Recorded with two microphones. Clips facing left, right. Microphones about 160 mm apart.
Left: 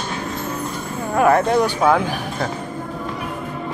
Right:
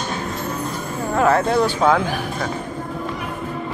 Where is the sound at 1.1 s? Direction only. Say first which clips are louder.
Left 2 dB; 20° left (ahead or behind).